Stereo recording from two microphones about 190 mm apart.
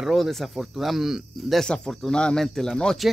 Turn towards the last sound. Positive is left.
turn(degrees=0)  # may be behind; listen again after turning